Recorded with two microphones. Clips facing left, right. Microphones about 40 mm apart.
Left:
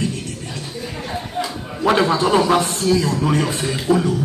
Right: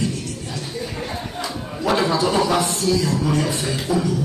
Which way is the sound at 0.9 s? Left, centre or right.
Centre.